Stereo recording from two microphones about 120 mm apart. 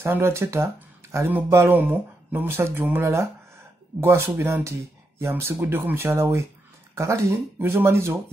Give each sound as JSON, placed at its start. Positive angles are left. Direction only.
{"t": 0.0, "sound": "speech", "side_deg": -20}